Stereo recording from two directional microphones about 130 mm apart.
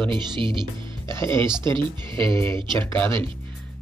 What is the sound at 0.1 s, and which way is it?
Speech, 40° right (ahead or behind).